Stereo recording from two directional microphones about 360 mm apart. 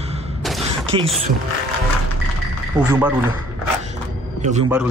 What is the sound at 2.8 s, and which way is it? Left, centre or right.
Speech, centre.